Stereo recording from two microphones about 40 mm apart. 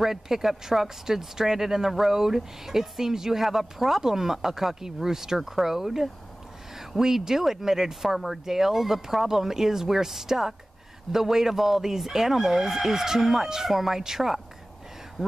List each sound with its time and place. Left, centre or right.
0.0 s speech: centre